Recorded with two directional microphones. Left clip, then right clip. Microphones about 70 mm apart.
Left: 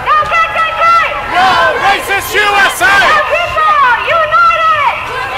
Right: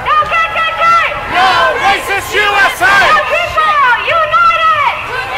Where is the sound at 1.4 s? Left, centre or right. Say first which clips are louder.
Left 1 dB; right.